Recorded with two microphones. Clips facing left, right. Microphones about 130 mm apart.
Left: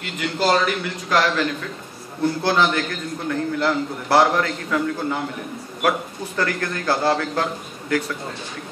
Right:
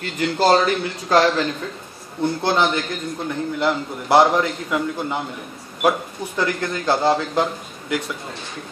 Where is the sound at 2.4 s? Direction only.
20° right (ahead or behind).